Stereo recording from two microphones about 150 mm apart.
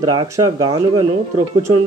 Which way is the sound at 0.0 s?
30° right (ahead or behind).